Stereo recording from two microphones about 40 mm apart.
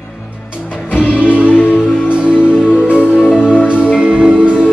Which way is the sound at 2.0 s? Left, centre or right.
Right.